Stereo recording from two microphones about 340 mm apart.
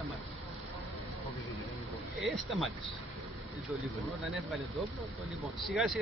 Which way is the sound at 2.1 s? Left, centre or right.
Centre.